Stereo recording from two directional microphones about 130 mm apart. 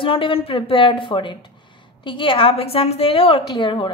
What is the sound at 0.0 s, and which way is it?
A woman's voice, 40° left (ahead or behind).